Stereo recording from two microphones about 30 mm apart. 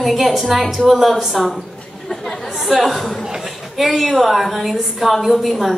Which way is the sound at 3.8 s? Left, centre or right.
Centre.